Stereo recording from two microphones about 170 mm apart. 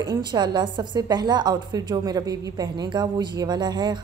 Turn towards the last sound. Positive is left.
turn(degrees=-25)  # may be behind; listen again after turning